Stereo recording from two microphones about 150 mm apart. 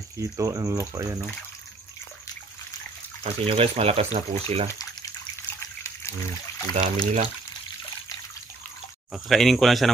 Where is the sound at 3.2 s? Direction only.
40° right (ahead or behind).